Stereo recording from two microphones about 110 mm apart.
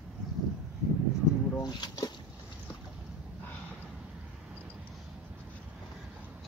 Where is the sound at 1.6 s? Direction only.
40° left (ahead or behind).